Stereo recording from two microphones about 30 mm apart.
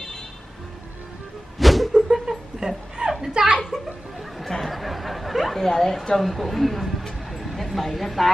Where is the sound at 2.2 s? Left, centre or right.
Centre.